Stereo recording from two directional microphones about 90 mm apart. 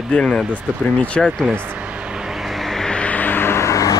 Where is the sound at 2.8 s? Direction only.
10° left (ahead or behind); by 3.9 s 35° left (ahead or behind).